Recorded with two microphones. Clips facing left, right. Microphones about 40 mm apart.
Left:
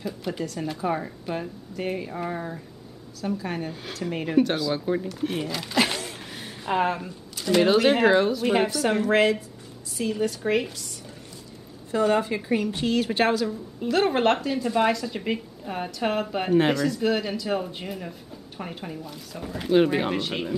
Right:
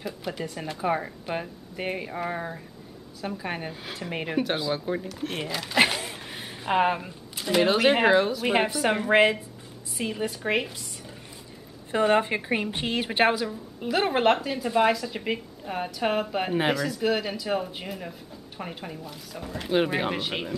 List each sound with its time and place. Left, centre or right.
0.4 s a woman's voice: centre
4.7 s a woman's voice: centre
5.9 s a sound: centre
7.6 s a woman's voice: centre
8.5 s a woman's voice: centre
11.9 s a woman's voice: right
13.5 s a woman's voice: centre